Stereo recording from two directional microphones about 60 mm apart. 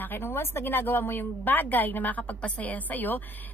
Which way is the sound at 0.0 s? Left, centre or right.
Left.